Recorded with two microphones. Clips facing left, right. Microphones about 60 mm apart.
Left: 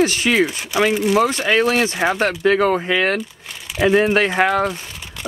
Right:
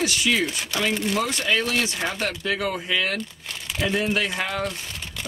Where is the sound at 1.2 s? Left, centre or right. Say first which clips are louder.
Left 7 dB; left.